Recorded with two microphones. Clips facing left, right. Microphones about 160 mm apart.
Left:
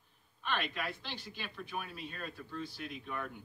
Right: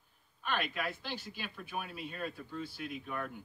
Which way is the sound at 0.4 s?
5° right (ahead or behind).